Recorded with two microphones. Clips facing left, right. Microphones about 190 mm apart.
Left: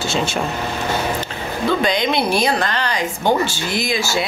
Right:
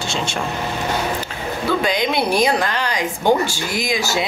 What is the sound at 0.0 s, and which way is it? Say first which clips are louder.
Speech: left 3 dB; 5° left (ahead or behind).